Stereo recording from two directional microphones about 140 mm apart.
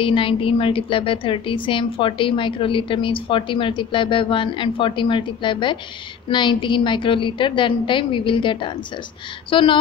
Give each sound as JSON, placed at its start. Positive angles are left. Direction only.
{"t": 0.0, "sound": "a woman's voice", "side_deg": 40}